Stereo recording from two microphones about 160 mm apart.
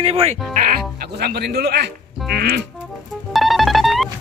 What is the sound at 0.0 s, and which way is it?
Speech, 40° right (ahead or behind).